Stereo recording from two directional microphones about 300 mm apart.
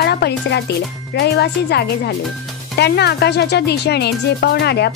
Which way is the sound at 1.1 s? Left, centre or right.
Left.